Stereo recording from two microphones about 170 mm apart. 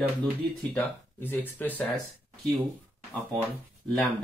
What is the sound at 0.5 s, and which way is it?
Speech, 10° left (ahead or behind).